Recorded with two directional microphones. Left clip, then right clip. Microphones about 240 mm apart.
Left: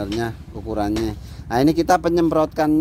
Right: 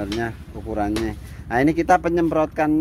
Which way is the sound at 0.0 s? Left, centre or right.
Centre.